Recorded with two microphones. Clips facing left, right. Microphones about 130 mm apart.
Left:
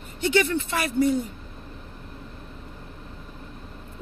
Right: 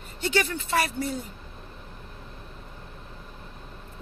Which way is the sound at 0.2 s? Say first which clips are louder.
Left 5 dB; 20° left (ahead or behind).